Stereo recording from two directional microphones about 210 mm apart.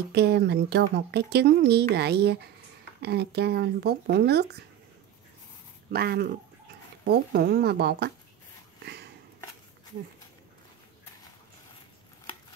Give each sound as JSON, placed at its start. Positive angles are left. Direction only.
{"t": 0.1, "sound": "speech", "side_deg": -50}
{"t": 5.9, "sound": "speech", "side_deg": -50}
{"t": 8.8, "sound": "a sound", "side_deg": -50}